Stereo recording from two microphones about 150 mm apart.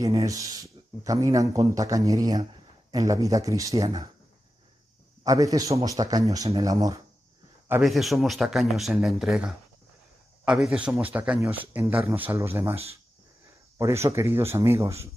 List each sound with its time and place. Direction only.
0.0 s speech: 20° right (ahead or behind)
5.2 s speech: 25° right (ahead or behind)
7.8 s speech: centre (ahead or behind); by 12.7 s 15° right (ahead or behind)
13.7 s speech: 20° right (ahead or behind)